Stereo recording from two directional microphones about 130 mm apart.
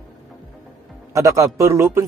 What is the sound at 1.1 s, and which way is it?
Speech, 25° right (ahead or behind).